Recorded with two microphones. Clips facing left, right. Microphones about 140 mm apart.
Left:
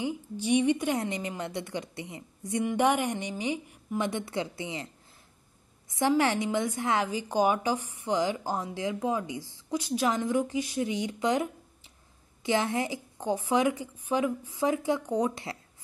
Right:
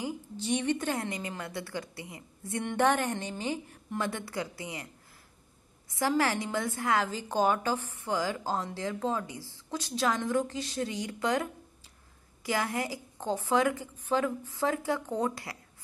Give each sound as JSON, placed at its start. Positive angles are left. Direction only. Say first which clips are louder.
{"t": 0.0, "sound": "a woman's voice", "louder": "left 4 dB", "side_deg": 15}
{"t": 5.9, "sound": "a woman's voice", "louder": "left 3 dB", "side_deg": 20}